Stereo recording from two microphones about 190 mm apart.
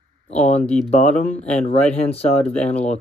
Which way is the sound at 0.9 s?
35° left (ahead or behind).